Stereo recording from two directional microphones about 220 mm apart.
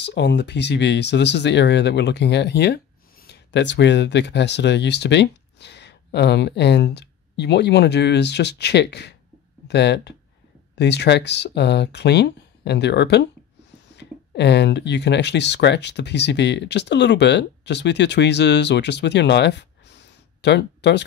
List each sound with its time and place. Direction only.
0.0 s speech: 50° left (ahead or behind)